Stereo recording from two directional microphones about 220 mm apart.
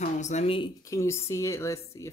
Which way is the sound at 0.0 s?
30° left (ahead or behind).